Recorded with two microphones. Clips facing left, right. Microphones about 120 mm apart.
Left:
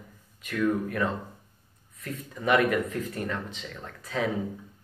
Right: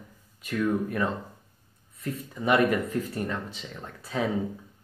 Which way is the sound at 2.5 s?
30° right (ahead or behind).